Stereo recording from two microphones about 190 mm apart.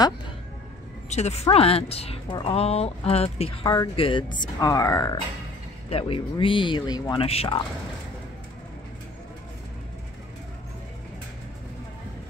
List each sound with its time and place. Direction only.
1.1 s speech: 35° left (ahead or behind); by 5.2 s 20° left (ahead or behind)
5.9 s speech: 30° left (ahead or behind)